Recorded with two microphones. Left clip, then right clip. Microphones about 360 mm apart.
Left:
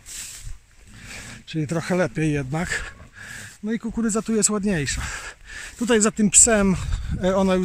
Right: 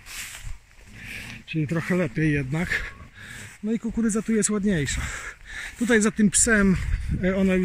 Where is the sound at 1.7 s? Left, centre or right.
Centre.